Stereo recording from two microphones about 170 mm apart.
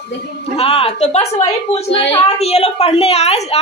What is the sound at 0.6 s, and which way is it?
A woman's voice, 35° left (ahead or behind).